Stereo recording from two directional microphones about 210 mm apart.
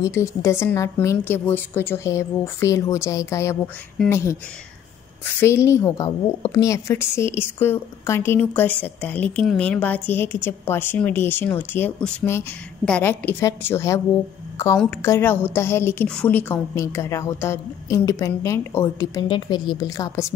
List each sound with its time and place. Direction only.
0.0 s a woman's voice: 15° left (ahead or behind)